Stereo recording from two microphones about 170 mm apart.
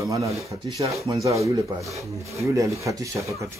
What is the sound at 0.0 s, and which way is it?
Speech, 20° right (ahead or behind).